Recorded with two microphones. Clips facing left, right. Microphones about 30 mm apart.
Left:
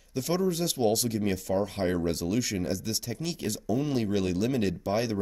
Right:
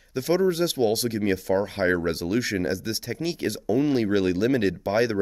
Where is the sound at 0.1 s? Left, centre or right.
Centre.